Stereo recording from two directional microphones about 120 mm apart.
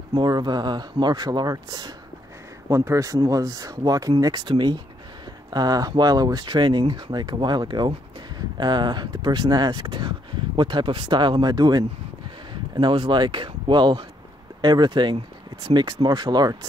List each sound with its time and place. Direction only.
0.1 s speech: 35° right (ahead or behind)